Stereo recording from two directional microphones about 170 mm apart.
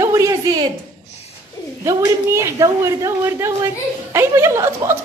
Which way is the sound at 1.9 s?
15° right (ahead or behind).